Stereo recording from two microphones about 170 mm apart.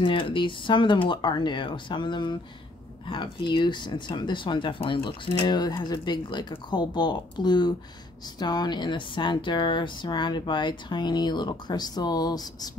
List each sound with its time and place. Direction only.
0.0 s speech: 30° left (ahead or behind)